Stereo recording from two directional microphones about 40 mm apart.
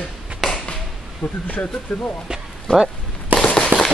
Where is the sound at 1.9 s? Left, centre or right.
Centre.